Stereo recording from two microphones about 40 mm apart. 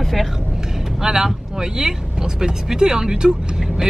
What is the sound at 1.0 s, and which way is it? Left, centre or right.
Speech, centre.